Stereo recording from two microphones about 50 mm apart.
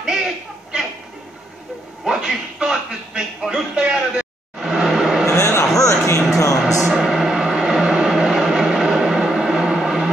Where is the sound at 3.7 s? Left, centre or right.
Right.